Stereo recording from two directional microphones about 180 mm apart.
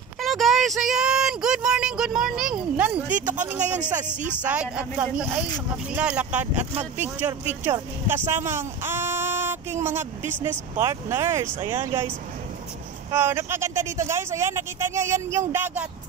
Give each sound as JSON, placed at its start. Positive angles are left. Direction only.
{"t": 0.2, "sound": "speech", "side_deg": 0}
{"t": 8.3, "sound": "a sound", "side_deg": -15}
{"t": 10.8, "sound": "speech", "side_deg": -15}
{"t": 13.1, "sound": "speech", "side_deg": -10}